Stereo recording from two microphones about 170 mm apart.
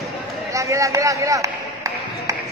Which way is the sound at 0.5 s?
20° right (ahead or behind).